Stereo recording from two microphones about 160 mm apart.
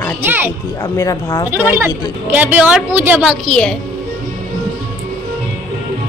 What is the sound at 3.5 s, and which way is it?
Speech, 5° left (ahead or behind).